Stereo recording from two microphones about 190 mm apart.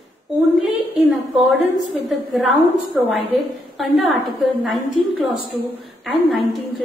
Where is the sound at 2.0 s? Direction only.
Centre (ahead or behind).